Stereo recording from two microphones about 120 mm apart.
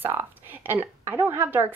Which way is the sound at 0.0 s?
20° right (ahead or behind).